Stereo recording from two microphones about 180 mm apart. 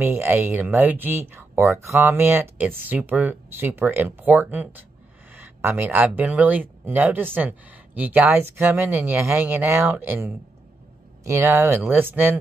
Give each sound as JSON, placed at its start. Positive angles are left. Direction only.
{"t": 0.0, "sound": "speech", "side_deg": -10}